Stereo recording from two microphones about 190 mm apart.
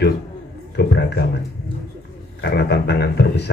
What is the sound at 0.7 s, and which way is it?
Speech, 60° left (ahead or behind).